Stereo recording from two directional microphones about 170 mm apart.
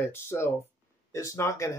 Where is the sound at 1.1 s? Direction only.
15° left (ahead or behind).